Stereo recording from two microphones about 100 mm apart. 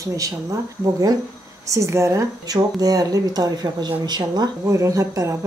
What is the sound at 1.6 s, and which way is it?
Speech, 30° right (ahead or behind).